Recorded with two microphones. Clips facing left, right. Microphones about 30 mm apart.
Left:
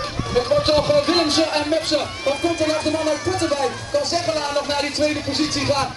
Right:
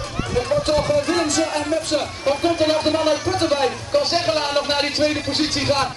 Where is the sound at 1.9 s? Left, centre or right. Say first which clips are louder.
Right 1 dB; centre.